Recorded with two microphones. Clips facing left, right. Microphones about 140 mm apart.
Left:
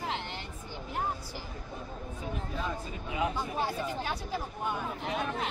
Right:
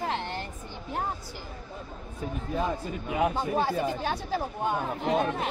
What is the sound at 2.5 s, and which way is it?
Speech, 50° right (ahead or behind).